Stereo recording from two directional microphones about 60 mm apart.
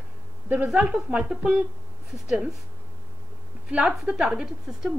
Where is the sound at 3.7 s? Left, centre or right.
Centre.